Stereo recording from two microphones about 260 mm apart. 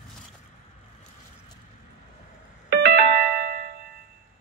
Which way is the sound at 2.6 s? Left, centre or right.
Right.